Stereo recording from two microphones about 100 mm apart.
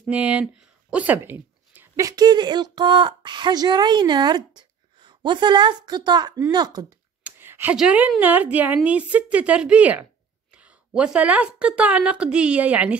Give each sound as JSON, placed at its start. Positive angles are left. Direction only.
{"t": 0.1, "sound": "speech", "side_deg": -15}
{"t": 2.0, "sound": "speech", "side_deg": -40}
{"t": 7.2, "sound": "a sound", "side_deg": -20}
{"t": 7.7, "sound": "a woman's voice", "side_deg": -10}